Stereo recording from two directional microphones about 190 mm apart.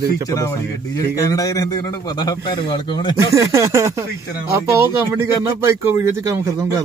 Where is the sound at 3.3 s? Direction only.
15° right (ahead or behind).